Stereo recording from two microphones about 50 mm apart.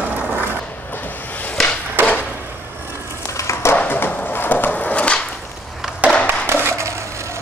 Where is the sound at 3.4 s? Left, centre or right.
Left.